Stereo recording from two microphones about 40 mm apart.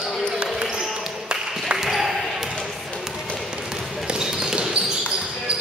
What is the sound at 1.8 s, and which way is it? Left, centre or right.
Basketball bounce, centre.